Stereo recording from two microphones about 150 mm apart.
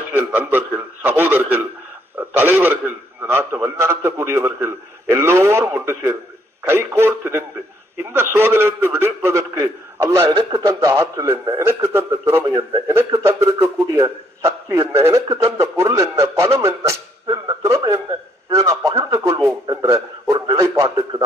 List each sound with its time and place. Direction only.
0.1 s a man's voice: 10° right (ahead or behind)